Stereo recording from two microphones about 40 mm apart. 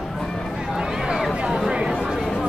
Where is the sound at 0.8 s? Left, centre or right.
Centre.